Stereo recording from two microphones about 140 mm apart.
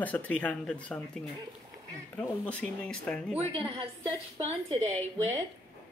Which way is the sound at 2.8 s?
5° left (ahead or behind).